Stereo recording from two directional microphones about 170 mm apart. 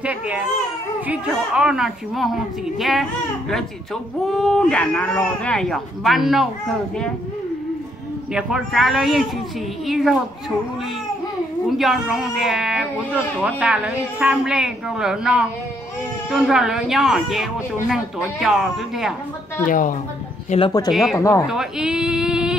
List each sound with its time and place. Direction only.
0.0 s a child's voice: 10° right (ahead or behind)
8.3 s speech: 5° right (ahead or behind)
11.8 s speech: centre (ahead or behind)
19.6 s a woman's voice: 50° left (ahead or behind)
20.4 s speech: 35° left (ahead or behind)
20.9 s speech: centre (ahead or behind)
21.2 s speech: 15° left (ahead or behind)
21.5 s speech: 5° right (ahead or behind)